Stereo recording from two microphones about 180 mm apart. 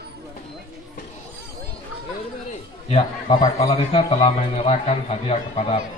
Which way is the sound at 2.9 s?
30° left (ahead or behind).